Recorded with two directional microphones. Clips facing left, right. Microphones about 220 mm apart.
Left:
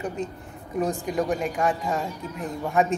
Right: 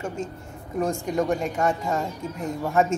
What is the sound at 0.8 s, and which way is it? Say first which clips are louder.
Speech: right 1 dB; centre (ahead or behind).